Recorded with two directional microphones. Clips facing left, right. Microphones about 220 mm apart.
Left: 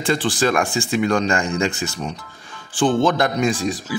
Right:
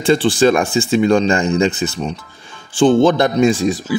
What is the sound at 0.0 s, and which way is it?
Speech, 25° right (ahead or behind).